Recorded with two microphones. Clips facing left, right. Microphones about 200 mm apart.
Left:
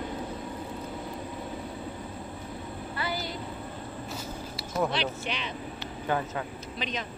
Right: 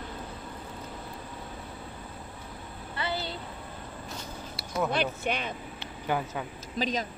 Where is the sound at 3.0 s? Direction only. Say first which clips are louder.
Right 1 dB; 25° right (ahead or behind).